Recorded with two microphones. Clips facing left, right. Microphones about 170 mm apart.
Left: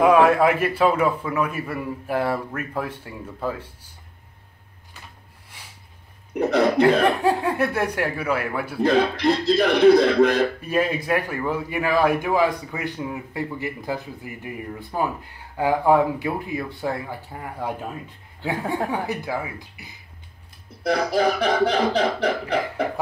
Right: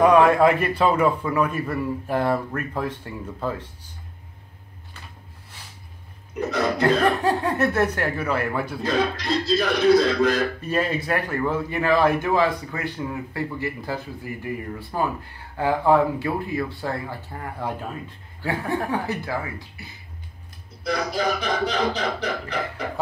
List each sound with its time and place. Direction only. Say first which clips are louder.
0.0 s a man's voice: even; 5° left (ahead or behind)
6.3 s speech: left 6 dB; 60° left (ahead or behind)
6.8 s a man's voice: right 1 dB; 10° left (ahead or behind)
8.8 s speech: left 6 dB; 60° left (ahead or behind)
10.6 s a man's voice: left 1 dB; 10° left (ahead or behind)
20.8 s speech: left 4 dB; 60° left (ahead or behind)